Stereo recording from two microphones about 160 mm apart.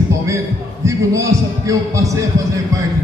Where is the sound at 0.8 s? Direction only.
20° right (ahead or behind).